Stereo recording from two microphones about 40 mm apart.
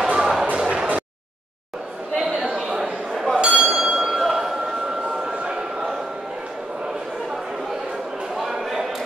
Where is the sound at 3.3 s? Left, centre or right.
Right.